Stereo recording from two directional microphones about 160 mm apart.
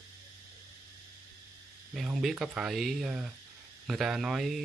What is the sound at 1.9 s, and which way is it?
Speech, centre (ahead or behind).